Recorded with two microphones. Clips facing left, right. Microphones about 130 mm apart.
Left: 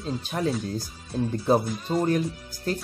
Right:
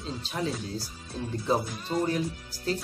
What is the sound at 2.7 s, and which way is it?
Speech, 50° left (ahead or behind).